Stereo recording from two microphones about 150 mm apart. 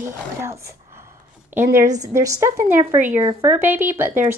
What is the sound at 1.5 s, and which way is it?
A woman's voice, 15° right (ahead or behind).